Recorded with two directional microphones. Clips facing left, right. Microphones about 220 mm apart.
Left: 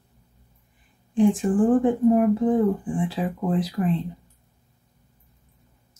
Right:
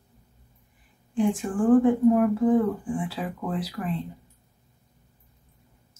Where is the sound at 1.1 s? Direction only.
20° left (ahead or behind).